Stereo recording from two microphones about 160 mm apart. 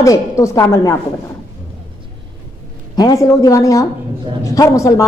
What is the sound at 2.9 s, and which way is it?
A man's voice, 20° left (ahead or behind).